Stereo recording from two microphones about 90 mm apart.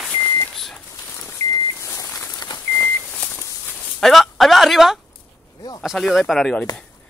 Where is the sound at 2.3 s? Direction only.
50° left (ahead or behind).